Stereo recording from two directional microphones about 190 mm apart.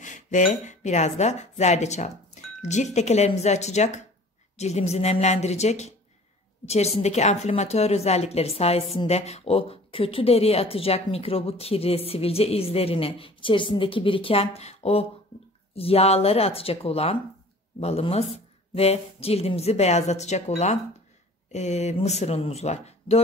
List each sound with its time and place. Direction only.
0.0 s speech: 40° left (ahead or behind)